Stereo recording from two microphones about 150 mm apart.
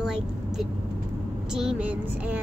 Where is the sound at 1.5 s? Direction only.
5° right (ahead or behind).